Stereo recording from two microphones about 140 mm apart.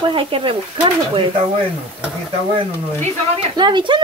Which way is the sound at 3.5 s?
35° right (ahead or behind).